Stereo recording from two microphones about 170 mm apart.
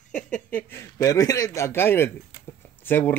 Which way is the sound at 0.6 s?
15° left (ahead or behind).